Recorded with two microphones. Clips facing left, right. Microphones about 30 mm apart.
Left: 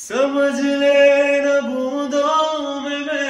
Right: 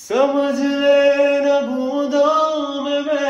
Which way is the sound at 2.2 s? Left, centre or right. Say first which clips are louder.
Right 2 dB; left.